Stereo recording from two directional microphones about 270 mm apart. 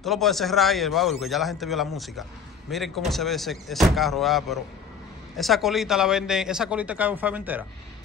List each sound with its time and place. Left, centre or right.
0.0 s a man's voice: centre